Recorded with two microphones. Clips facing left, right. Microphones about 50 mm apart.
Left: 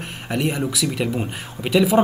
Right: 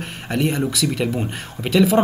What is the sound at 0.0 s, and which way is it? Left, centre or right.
A man's voice, centre.